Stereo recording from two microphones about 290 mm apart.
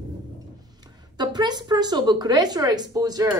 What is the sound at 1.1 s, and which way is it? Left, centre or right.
Speech, centre.